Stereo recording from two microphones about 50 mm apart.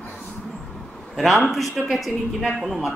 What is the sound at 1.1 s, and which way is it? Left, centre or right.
A man's voice, centre.